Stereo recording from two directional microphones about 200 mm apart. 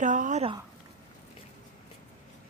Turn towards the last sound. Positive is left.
turn(degrees=-35)  # may be behind; listen again after turning